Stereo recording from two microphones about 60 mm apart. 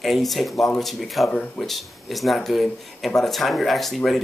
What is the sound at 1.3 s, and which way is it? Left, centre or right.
Speech, left.